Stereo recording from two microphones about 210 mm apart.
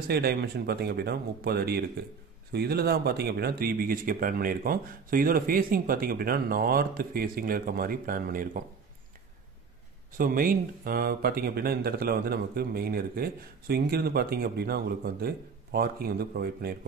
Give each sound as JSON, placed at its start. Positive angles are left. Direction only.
{"t": 0.1, "sound": "speech", "side_deg": -50}
{"t": 10.1, "sound": "speech", "side_deg": -40}